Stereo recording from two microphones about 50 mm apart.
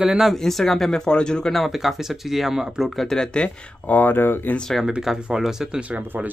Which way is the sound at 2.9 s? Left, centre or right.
Centre.